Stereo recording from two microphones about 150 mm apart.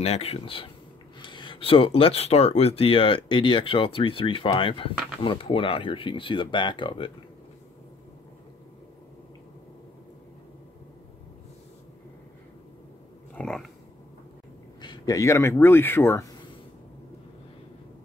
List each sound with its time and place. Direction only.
0.0 s speech: 45° left (ahead or behind)
13.3 s a sound: 5° left (ahead or behind)
14.8 s speech: 25° left (ahead or behind)